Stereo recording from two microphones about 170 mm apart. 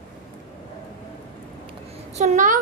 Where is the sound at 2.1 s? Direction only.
45° right (ahead or behind).